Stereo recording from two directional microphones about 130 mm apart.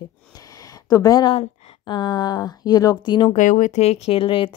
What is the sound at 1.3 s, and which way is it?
Speech, 40° left (ahead or behind).